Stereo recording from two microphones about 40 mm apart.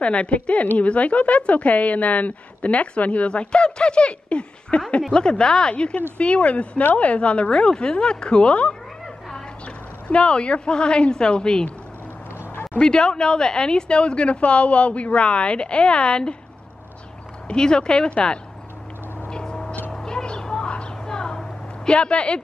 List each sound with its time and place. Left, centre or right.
0.0 s a woman's voice: left
7.5 s a woman's voice: left
10.0 s a woman's voice: left
12.7 s a woman's voice: centre
17.5 s a woman's voice: left
19.2 s vehicle: centre
20.1 s a sound: centre